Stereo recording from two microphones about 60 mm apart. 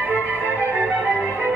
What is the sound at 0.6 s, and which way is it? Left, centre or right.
Organ, right.